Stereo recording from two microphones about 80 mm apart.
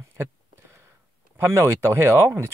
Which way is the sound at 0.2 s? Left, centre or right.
Right.